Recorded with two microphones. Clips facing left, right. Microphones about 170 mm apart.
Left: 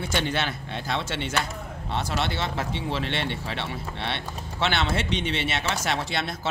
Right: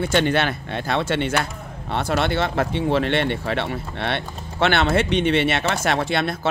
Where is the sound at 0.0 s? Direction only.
55° right (ahead or behind).